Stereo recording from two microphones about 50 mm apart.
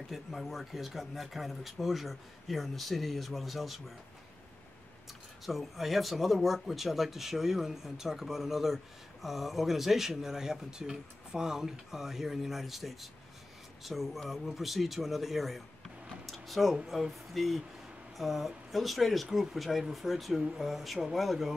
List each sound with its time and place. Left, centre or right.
0.1 s speech: centre
5.4 s speech: centre
16.3 s a sound: centre
16.7 s speech: centre